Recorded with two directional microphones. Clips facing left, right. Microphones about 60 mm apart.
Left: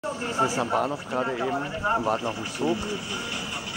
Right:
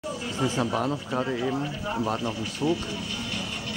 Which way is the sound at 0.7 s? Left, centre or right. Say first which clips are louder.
Left 1 dB; centre.